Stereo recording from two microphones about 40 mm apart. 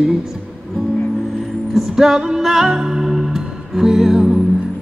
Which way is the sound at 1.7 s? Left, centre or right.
Centre.